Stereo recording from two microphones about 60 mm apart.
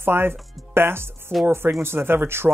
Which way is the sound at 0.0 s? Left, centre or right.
Right.